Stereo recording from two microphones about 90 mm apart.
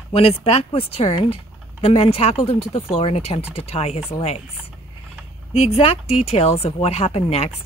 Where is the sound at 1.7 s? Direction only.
90° left.